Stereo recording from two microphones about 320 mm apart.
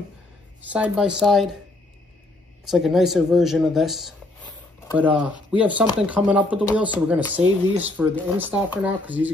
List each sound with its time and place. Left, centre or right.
0.6 s speech: centre
2.7 s speech: centre